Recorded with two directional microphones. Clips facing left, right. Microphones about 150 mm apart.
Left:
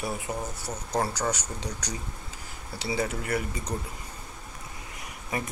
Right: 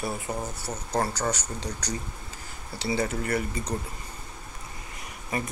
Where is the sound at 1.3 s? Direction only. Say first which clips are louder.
Right 1 dB; 15° left (ahead or behind).